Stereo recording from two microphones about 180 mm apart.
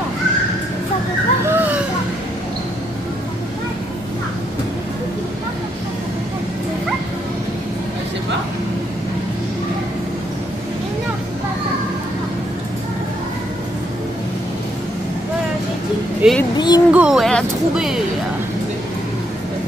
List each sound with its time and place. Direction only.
1.5 s music: 10° right (ahead or behind)
16.2 s speech: 5° right (ahead or behind)
16.5 s speech: 25° left (ahead or behind)
16.9 s speech: 5° right (ahead or behind)